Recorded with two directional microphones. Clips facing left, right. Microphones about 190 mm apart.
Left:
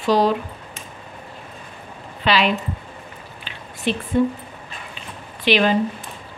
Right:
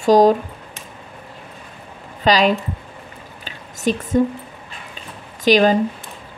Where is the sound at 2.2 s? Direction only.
40° right (ahead or behind).